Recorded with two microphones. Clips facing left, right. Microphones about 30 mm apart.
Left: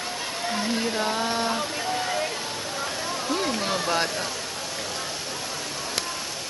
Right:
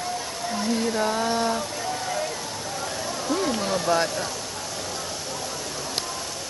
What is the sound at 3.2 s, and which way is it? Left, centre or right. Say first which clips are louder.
Rain: right 2 dB; centre.